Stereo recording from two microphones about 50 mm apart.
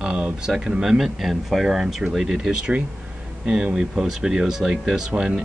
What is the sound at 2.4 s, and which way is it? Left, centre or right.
Speech, centre.